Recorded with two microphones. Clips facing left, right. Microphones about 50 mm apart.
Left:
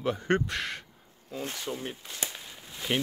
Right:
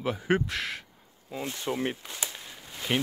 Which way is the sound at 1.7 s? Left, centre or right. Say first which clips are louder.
Right 6 dB; right.